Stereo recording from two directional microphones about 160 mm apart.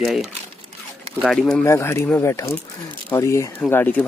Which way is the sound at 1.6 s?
15° left (ahead or behind).